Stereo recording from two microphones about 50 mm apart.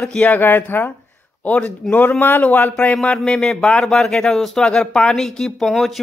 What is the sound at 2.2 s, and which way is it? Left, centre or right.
Speech, left.